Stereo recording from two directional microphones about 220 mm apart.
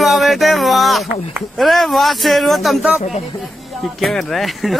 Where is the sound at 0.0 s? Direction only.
Centre (ahead or behind).